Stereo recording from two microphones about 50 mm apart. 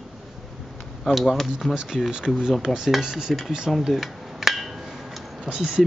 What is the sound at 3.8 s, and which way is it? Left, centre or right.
Dishes, centre.